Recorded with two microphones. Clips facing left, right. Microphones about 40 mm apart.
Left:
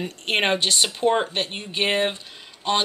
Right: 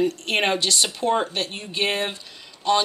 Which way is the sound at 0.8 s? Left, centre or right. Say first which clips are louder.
Left 1 dB; centre.